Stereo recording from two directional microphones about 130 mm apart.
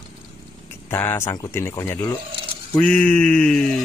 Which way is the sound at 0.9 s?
20° left (ahead or behind).